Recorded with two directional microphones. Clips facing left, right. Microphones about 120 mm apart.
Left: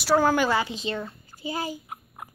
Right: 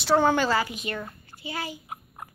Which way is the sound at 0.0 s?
5° left (ahead or behind).